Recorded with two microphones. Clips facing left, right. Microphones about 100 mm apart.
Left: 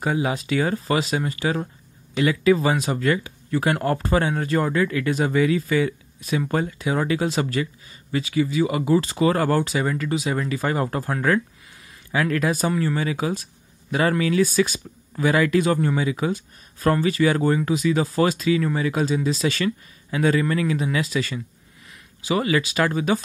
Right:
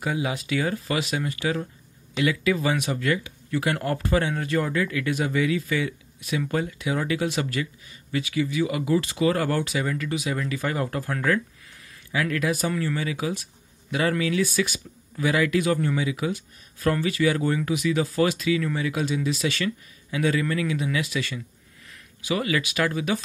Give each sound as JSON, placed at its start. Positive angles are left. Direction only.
{"t": 0.0, "sound": "speech", "side_deg": 40}